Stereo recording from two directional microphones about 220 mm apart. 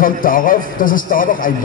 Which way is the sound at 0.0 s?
40° left (ahead or behind).